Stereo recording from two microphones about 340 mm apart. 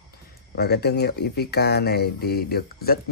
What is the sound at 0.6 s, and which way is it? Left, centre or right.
Speech, left.